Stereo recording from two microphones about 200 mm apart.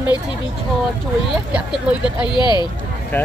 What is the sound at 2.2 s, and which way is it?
Speech, 20° left (ahead or behind).